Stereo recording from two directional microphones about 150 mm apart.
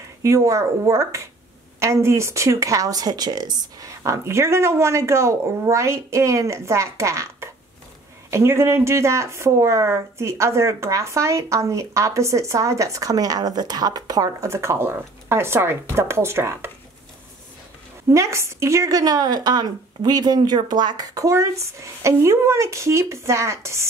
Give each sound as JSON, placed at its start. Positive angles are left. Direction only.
{"t": 0.2, "sound": "speech", "side_deg": -20}
{"t": 18.1, "sound": "speech", "side_deg": -20}